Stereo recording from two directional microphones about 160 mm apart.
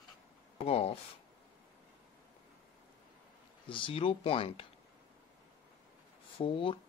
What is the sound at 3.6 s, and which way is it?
Speech, 30° left (ahead or behind).